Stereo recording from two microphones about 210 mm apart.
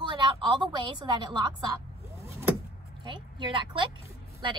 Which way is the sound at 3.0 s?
20° right (ahead or behind).